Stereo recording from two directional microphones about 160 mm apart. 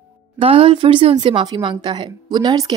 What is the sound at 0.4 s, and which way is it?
A woman's voice, 35° right (ahead or behind).